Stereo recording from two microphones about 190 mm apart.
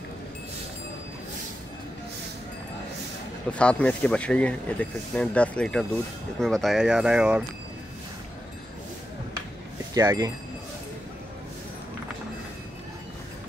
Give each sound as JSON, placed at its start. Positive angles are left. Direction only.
{"t": 3.5, "sound": "speech", "side_deg": 5}
{"t": 9.9, "sound": "speech", "side_deg": -20}